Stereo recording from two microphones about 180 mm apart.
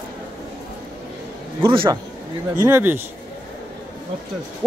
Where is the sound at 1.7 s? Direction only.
30° right (ahead or behind).